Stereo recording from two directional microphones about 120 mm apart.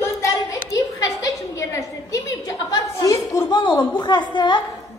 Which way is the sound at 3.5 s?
40° left (ahead or behind).